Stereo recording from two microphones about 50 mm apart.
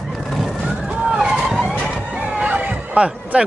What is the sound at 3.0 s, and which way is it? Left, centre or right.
Speech, right.